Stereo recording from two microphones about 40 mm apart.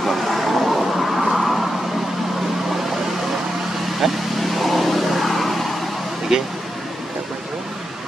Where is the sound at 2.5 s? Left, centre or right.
Centre.